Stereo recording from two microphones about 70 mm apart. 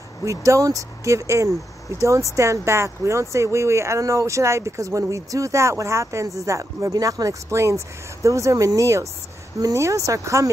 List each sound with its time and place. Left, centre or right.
0.2 s speech: right
6.9 s speech: right